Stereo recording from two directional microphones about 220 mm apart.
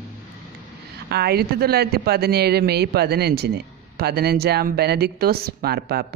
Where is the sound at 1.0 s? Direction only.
45° right (ahead or behind).